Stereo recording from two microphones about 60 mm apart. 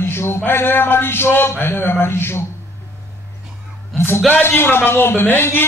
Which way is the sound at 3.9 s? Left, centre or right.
Centre.